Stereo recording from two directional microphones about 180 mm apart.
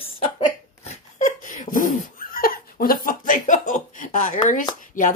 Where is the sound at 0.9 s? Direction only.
45° left (ahead or behind).